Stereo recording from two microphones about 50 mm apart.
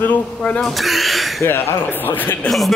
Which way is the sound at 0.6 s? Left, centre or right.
Centre.